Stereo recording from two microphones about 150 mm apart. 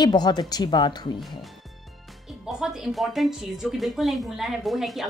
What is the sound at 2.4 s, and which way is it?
Speech, 5° right (ahead or behind).